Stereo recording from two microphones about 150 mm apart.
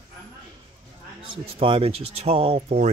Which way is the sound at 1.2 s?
35° right (ahead or behind).